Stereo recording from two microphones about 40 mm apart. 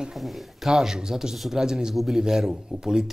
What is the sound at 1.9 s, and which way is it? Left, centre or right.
Speech, centre.